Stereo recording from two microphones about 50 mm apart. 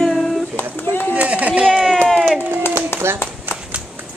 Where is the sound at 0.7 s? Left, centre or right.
Left.